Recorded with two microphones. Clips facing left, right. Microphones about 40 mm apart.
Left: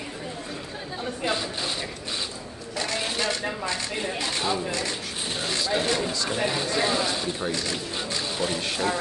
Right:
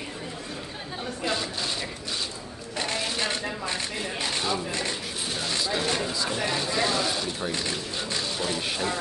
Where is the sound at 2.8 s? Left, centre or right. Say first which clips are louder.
Left 1 dB; right.